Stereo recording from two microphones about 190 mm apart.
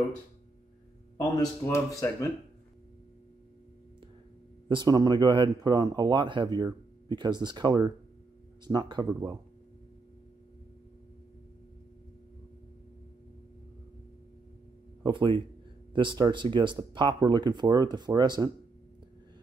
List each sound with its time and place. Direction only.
1.1 s speech: 20° left (ahead or behind)
4.6 s speech: 25° right (ahead or behind)
15.0 s speech: 25° right (ahead or behind)